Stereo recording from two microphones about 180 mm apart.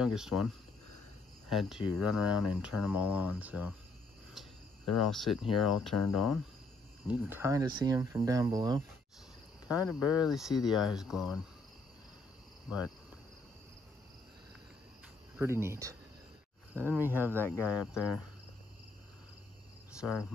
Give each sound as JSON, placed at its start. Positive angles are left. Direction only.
{"t": 0.0, "sound": "speech", "side_deg": -5}
{"t": 1.5, "sound": "speech", "side_deg": 0}
{"t": 7.1, "sound": "speech", "side_deg": -10}
{"t": 9.7, "sound": "cricket", "side_deg": -5}
{"t": 9.9, "sound": "speech", "side_deg": 20}
{"t": 10.2, "sound": "speech", "side_deg": 0}
{"t": 12.6, "sound": "insect", "side_deg": -5}
{"t": 15.3, "sound": "speech", "side_deg": -15}
{"t": 16.9, "sound": "cricket", "side_deg": 10}
{"t": 20.0, "sound": "speech", "side_deg": 5}